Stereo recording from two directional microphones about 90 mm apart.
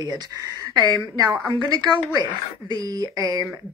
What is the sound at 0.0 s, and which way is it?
Speech, 40° right (ahead or behind).